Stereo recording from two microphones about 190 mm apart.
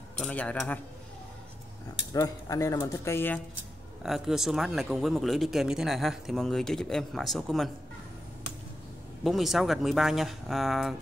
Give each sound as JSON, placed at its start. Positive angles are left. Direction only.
{"t": 0.2, "sound": "speech", "side_deg": 5}
{"t": 2.1, "sound": "speech", "side_deg": 20}
{"t": 4.0, "sound": "speech", "side_deg": 0}
{"t": 9.2, "sound": "speech", "side_deg": 0}